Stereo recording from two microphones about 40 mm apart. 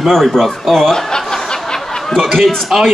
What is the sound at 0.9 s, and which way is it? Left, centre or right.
Chuckle, centre.